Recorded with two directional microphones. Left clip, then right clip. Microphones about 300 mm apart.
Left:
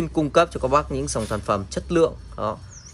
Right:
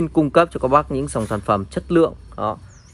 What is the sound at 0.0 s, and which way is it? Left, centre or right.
A man's voice, centre.